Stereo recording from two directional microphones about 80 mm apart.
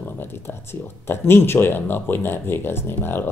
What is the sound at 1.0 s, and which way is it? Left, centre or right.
Speech, left.